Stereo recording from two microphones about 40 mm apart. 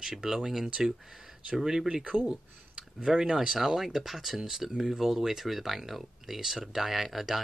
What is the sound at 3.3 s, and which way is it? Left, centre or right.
Speech, centre.